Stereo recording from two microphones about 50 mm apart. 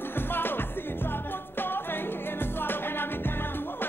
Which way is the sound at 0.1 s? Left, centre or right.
Left.